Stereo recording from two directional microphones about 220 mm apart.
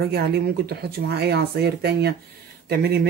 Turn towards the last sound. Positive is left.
turn(degrees=-45)  # may be behind; listen again after turning